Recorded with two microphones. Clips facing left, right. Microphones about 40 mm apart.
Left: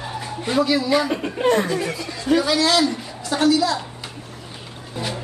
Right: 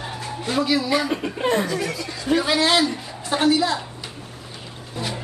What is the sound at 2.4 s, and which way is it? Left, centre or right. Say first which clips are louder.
A man's voice: left 1 dB; right.